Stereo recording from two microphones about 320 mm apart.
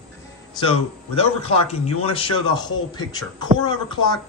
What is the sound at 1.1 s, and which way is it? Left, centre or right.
Speech, centre.